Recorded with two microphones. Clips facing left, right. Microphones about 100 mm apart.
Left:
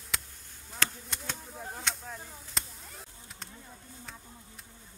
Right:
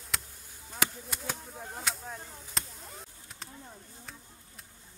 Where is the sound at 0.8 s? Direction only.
5° right (ahead or behind).